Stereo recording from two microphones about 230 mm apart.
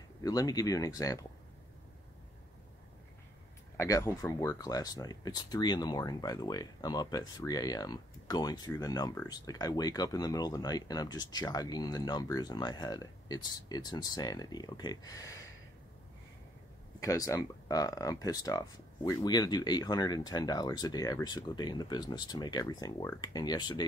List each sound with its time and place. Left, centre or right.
0.2 s speech: centre
3.7 s speech: centre
17.0 s speech: centre